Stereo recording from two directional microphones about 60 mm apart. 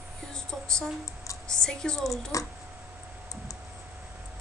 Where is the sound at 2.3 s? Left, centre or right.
Left.